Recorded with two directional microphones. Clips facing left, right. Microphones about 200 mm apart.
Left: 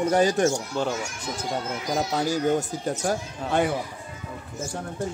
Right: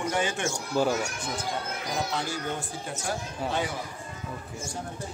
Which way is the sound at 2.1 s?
40° left (ahead or behind).